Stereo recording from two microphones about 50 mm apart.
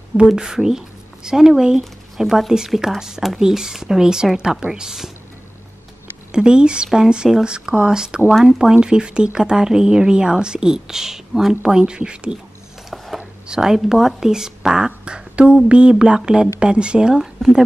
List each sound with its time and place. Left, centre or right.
0.4 s speech: centre
6.3 s speech: centre
11.6 s speech: centre
12.9 s a sound: centre
13.5 s speech: centre
14.9 s speech: right